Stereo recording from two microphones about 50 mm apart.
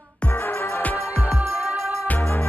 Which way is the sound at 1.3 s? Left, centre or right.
Right.